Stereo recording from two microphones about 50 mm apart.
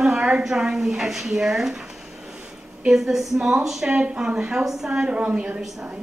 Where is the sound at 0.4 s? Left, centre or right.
Centre.